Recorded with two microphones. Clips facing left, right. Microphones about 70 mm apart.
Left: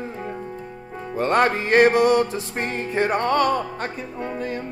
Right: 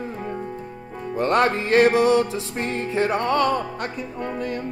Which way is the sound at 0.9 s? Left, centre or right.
Left.